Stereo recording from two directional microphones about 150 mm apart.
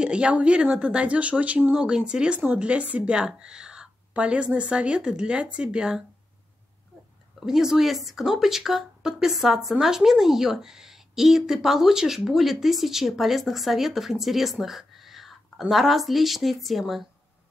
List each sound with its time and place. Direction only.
0.0 s speech: 5° right (ahead or behind)
7.3 s a woman's voice: 5° right (ahead or behind)